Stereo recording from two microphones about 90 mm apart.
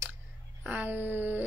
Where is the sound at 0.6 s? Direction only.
20° right (ahead or behind).